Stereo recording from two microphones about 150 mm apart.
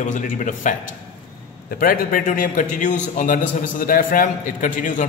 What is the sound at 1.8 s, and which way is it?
A man's voice, 75° left (ahead or behind).